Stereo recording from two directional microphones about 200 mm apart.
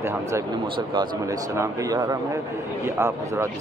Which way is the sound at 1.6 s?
20° right (ahead or behind).